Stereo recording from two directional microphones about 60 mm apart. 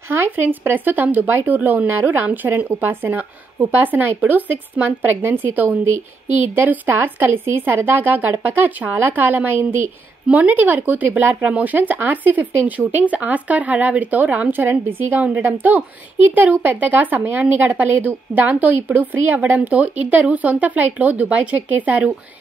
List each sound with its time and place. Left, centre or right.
0.1 s a woman's voice: right